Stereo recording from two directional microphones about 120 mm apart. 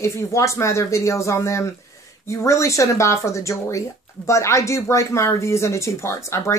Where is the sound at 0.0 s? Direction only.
25° left (ahead or behind).